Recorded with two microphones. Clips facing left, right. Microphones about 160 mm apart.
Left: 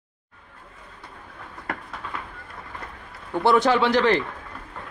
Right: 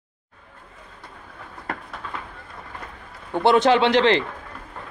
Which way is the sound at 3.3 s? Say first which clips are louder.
Right 2 dB; 20° right (ahead or behind).